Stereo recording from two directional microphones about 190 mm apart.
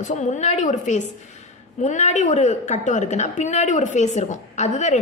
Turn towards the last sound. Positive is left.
turn(degrees=35)  # may be behind; listen again after turning